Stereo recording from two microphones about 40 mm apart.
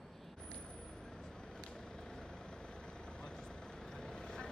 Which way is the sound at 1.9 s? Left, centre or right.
Centre.